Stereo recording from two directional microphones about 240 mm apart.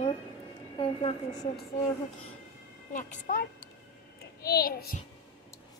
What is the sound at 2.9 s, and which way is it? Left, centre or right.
A woman's voice, left.